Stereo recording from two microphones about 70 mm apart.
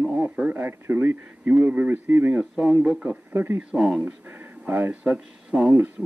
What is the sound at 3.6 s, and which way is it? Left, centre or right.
Speech, centre.